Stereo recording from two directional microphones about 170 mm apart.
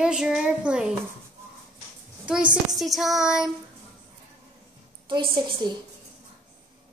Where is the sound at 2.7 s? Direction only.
Centre (ahead or behind).